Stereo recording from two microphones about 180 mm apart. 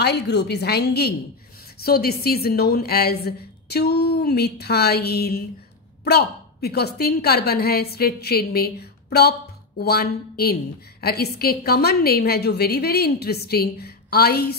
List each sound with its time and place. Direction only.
0.0 s a woman's voice: 70° left (ahead or behind)